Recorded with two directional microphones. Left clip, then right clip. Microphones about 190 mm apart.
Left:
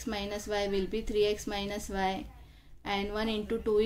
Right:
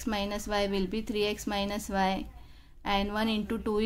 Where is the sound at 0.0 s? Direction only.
35° right (ahead or behind).